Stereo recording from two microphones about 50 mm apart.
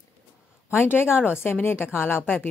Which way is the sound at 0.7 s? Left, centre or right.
Left.